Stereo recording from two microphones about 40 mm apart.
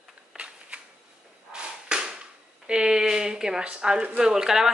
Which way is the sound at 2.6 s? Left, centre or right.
Centre.